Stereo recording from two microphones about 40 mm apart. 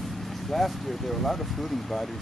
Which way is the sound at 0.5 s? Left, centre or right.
Centre.